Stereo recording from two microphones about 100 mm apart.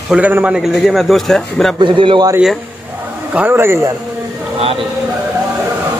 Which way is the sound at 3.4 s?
20° right (ahead or behind).